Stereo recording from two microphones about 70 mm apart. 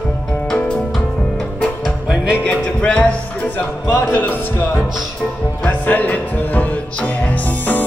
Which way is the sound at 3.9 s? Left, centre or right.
Left.